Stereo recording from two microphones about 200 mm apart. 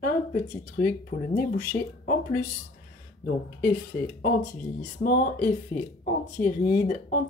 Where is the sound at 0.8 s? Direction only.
50° left (ahead or behind).